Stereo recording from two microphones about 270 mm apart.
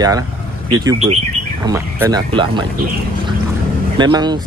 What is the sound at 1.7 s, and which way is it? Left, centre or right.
Speech, centre.